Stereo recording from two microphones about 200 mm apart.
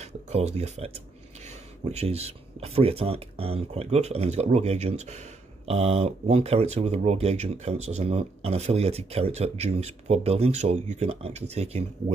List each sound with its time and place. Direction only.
0.0 s speech: 35° right (ahead or behind)